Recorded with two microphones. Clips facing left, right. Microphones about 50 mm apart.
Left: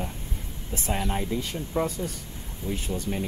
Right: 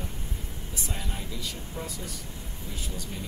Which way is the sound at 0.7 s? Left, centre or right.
Left.